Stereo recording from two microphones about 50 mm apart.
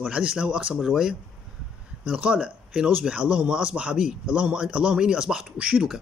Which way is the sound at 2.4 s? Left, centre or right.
Centre.